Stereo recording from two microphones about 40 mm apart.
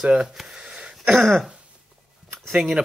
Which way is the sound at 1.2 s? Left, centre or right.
Centre.